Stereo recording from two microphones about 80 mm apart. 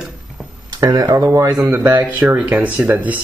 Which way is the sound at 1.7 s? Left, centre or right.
Right.